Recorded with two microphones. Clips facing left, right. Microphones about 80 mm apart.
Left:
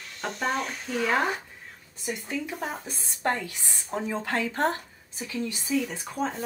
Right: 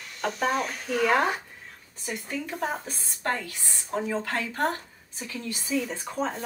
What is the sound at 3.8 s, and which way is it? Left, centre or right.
Speech, centre.